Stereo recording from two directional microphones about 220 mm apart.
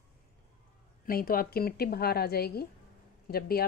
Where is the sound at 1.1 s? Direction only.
40° left (ahead or behind).